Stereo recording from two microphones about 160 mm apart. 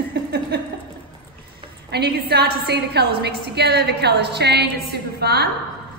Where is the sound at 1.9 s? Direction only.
85° right.